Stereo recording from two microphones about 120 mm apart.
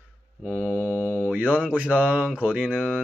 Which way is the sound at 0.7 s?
15° right (ahead or behind).